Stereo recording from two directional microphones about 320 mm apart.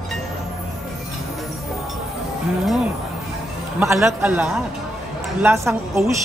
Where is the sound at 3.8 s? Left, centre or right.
Centre.